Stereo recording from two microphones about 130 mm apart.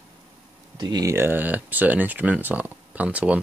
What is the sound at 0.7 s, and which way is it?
Speech, 30° right (ahead or behind).